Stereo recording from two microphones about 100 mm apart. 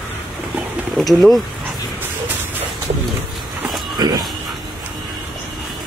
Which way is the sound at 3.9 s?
45° right (ahead or behind).